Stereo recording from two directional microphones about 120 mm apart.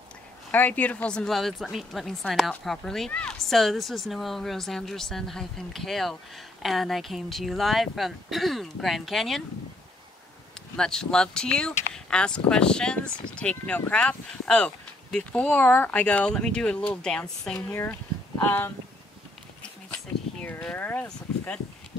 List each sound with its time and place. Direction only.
0.5 s a woman's voice: 15° left (ahead or behind)
10.8 s a woman's voice: 5° left (ahead or behind)
20.4 s speech: 15° left (ahead or behind)